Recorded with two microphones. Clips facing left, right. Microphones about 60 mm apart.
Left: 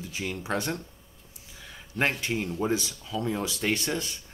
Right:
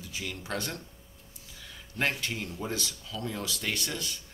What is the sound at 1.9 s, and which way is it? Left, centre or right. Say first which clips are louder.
Speech: left 4 dB; left.